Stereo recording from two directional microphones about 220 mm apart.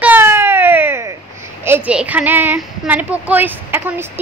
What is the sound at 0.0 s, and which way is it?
Baby cry, 10° right (ahead or behind).